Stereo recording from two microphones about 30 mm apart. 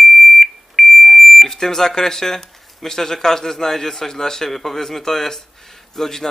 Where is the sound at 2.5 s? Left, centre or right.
Centre.